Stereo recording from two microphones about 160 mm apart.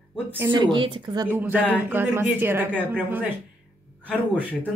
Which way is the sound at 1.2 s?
15° right (ahead or behind).